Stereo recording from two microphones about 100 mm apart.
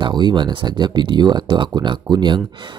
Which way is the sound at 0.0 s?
50° right (ahead or behind).